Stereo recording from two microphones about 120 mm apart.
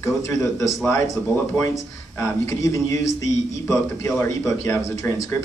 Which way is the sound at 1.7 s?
25° left (ahead or behind).